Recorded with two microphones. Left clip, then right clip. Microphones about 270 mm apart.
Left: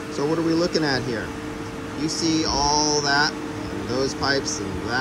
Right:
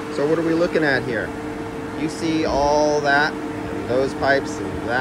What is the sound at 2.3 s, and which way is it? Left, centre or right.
Speech, centre.